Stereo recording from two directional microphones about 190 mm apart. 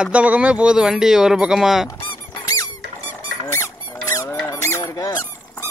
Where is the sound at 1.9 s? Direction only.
25° left (ahead or behind).